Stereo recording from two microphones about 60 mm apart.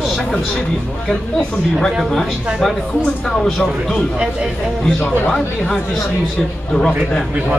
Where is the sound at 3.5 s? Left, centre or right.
Centre.